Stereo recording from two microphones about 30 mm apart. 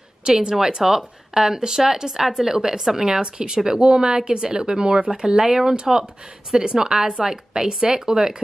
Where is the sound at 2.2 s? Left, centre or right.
Centre.